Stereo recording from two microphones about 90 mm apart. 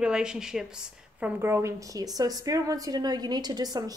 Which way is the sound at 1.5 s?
35° right (ahead or behind).